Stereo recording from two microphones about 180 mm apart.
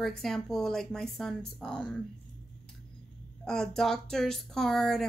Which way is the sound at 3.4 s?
5° left (ahead or behind).